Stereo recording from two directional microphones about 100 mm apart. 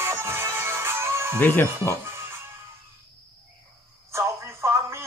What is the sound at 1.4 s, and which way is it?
Speech, 20° left (ahead or behind).